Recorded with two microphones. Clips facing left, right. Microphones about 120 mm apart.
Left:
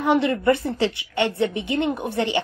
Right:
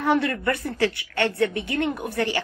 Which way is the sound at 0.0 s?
20° left (ahead or behind).